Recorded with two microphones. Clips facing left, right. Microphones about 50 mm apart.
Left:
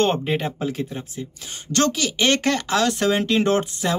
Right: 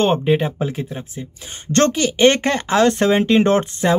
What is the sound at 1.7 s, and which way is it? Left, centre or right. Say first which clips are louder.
Speech: right 5 dB; right.